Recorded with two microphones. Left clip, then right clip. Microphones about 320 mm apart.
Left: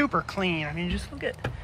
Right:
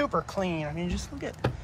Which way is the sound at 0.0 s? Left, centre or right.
Centre.